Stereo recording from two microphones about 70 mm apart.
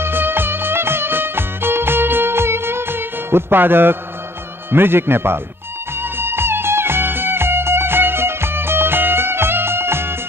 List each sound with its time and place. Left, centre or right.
0.0 s music: right
4.6 s a man's voice: right
6.1 s music: right